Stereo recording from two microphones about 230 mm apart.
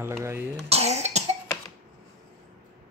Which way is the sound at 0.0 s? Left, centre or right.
Centre.